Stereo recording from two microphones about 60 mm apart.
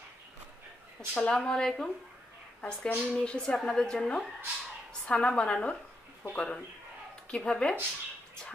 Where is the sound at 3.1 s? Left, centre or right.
Centre.